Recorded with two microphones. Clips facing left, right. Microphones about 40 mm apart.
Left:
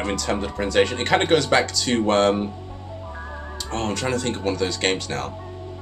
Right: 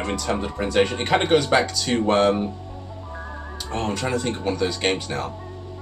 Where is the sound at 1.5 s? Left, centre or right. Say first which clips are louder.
Even; centre.